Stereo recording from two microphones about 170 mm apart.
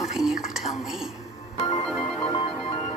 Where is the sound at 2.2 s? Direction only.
30° left (ahead or behind).